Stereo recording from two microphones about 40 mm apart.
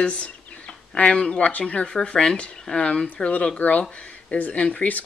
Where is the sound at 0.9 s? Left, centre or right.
Left.